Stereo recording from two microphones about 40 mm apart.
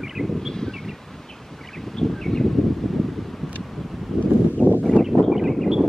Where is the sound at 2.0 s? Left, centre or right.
Centre.